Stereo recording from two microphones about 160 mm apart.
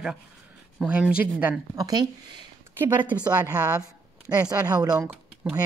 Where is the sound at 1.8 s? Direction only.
25° right (ahead or behind).